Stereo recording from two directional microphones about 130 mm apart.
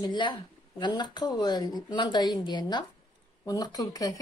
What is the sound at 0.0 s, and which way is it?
Speech, 35° left (ahead or behind).